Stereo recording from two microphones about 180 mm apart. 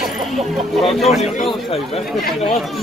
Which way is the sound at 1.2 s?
35° left (ahead or behind).